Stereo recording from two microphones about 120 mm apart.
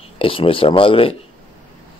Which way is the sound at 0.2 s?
50° left (ahead or behind).